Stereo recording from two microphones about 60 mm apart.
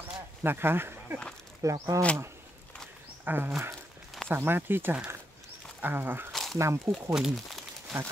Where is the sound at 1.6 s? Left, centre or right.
Right.